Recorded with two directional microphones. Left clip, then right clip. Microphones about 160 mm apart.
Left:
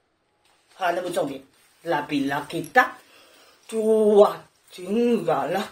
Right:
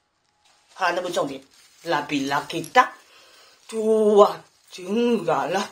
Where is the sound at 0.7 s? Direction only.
20° left (ahead or behind).